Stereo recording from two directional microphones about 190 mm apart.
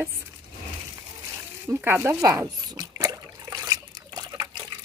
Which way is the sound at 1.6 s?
10° right (ahead or behind).